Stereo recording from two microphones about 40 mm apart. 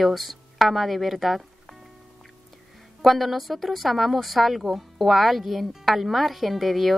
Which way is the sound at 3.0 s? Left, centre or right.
Centre.